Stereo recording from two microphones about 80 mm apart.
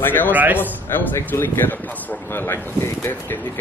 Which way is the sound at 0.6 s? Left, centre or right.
Left.